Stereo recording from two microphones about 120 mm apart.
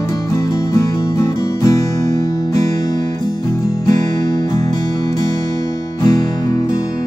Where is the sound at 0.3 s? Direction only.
25° left (ahead or behind).